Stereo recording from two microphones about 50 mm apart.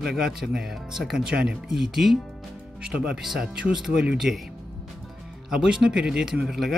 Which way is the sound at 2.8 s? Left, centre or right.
Centre.